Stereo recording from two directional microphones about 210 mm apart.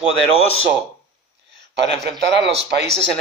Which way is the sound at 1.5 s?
55° right (ahead or behind).